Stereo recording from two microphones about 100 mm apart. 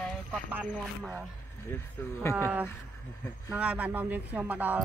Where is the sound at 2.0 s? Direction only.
25° left (ahead or behind).